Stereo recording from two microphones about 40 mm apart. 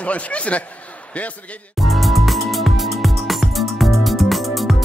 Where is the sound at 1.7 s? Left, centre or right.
Centre.